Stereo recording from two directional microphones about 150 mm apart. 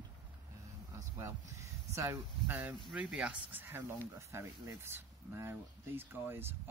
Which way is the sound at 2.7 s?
5° right (ahead or behind).